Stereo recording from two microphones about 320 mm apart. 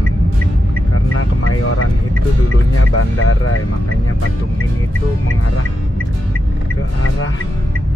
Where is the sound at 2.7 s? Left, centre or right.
Left.